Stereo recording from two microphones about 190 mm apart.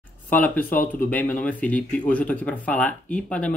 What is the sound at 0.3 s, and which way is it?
Speech, 10° left (ahead or behind).